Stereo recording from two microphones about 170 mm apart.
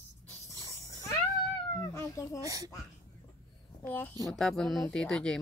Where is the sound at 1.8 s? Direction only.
20° left (ahead or behind).